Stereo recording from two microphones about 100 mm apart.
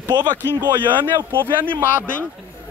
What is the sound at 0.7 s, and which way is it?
Speech, 55° right (ahead or behind).